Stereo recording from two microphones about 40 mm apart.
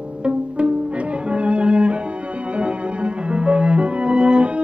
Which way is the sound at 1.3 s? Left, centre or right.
Right.